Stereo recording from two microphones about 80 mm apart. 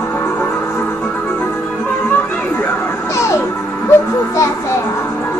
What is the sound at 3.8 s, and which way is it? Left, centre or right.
Music, left.